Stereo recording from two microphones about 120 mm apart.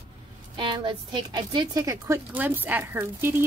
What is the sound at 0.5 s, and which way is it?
Speech, 40° right (ahead or behind).